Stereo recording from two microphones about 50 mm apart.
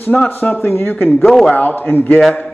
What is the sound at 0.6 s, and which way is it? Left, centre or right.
Speech, left.